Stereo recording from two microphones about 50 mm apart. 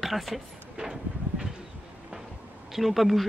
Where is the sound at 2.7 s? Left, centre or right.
Centre.